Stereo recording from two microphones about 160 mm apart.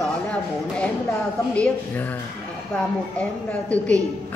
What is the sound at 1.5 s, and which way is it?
Speech, 10° left (ahead or behind).